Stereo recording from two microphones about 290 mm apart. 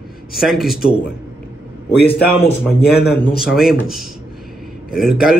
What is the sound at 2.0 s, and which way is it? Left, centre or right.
Speech, centre.